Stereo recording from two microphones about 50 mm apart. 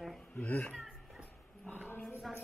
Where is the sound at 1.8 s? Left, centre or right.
Left.